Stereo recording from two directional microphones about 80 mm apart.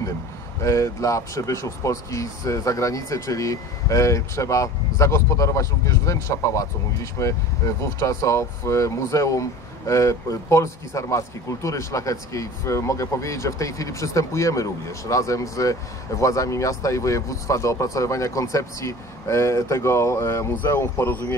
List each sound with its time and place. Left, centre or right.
0.6 s speech: left